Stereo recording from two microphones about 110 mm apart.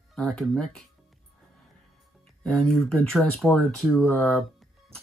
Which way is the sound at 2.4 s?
5° left (ahead or behind).